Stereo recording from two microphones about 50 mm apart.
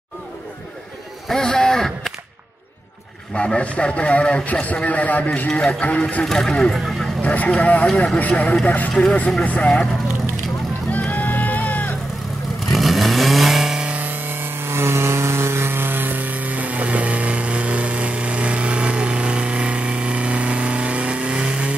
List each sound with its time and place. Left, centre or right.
1.3 s speech: centre
3.3 s a man's voice: left
6.2 s speech: centre
7.2 s a man's voice: left
8.2 s a man's voice: left
10.9 s music: left
12.7 s vehicle: centre
13.8 s a sound: right; by 21.7 s centre